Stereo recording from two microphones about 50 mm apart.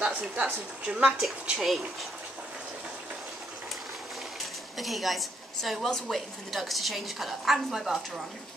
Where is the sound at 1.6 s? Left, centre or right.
Centre.